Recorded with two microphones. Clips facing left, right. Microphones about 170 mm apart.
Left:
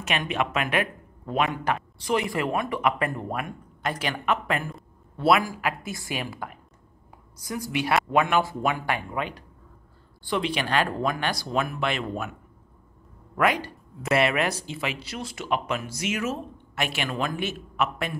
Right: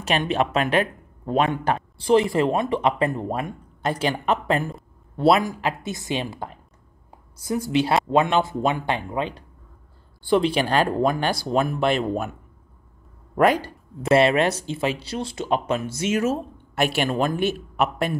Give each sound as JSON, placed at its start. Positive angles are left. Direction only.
{"t": 0.0, "sound": "speech", "side_deg": -35}
{"t": 14.0, "sound": "speech", "side_deg": -30}